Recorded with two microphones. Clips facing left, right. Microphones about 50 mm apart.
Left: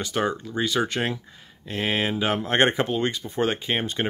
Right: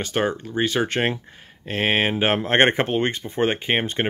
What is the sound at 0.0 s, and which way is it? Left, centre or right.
Speech, right.